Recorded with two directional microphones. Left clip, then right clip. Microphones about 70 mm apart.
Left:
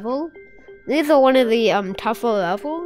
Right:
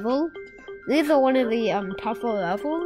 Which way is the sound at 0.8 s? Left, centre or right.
Left.